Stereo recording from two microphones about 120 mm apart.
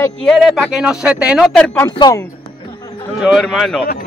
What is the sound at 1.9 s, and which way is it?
Speech, 35° left (ahead or behind).